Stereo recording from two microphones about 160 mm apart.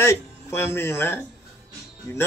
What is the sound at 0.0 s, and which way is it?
Speech, 15° left (ahead or behind).